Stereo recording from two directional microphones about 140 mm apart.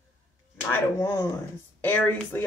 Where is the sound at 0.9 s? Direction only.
20° left (ahead or behind).